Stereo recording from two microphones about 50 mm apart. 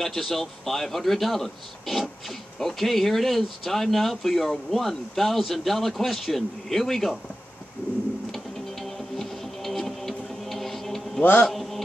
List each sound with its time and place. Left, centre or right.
0.0 s a man's voice: centre
8.3 s music: centre
11.4 s mantra: centre